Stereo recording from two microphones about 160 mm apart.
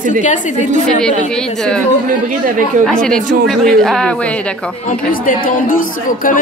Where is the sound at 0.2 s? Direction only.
50° left (ahead or behind).